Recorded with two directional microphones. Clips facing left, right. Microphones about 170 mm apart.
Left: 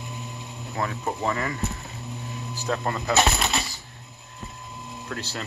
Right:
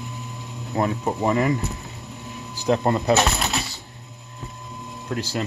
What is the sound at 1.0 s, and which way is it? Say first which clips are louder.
Speech: right 5 dB; 15° right (ahead or behind).